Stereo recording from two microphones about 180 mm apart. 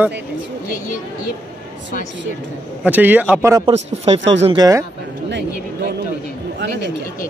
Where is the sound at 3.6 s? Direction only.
35° right (ahead or behind).